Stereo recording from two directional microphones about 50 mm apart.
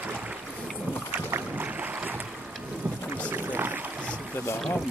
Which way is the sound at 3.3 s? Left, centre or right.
Right.